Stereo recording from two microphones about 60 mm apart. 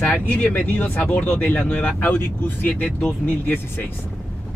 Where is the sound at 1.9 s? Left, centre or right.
Left.